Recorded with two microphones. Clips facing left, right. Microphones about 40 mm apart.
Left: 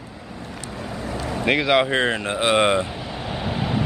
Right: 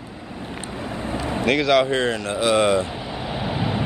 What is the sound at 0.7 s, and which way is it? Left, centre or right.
Vehicle, right.